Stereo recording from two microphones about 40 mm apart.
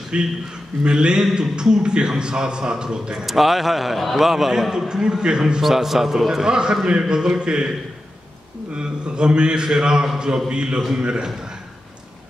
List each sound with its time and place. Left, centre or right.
0.1 s a man's voice: right
3.3 s a man's voice: centre
5.6 s a man's voice: centre
8.7 s a man's voice: right